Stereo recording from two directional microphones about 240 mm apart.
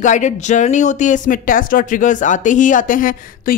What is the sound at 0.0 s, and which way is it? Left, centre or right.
A woman's voice, left.